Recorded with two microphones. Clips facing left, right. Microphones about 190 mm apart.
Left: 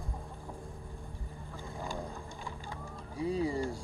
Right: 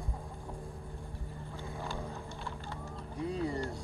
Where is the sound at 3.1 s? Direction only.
10° left (ahead or behind).